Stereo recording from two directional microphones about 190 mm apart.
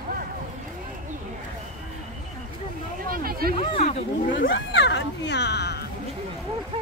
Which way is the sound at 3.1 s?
50° right (ahead or behind).